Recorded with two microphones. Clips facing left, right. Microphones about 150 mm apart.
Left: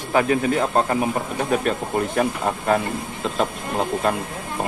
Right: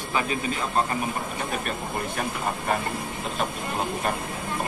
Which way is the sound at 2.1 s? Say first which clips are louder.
Left 7 dB; 65° left (ahead or behind).